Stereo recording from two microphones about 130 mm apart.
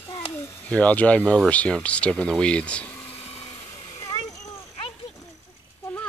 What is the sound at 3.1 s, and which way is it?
Vacuum cleaner, 50° left (ahead or behind).